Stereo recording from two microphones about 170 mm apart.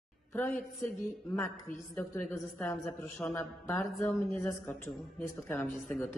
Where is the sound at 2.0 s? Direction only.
15° left (ahead or behind).